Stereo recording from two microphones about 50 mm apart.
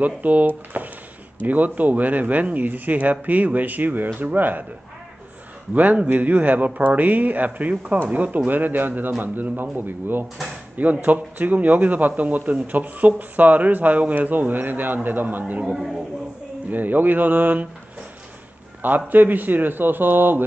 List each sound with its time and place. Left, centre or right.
0.0 s speech: right
0.7 s a sound: right
1.4 s speech: right
5.8 s speech: right
10.8 s speech: right
15.7 s a man's voice: centre
16.7 s speech: right
18.8 s speech: right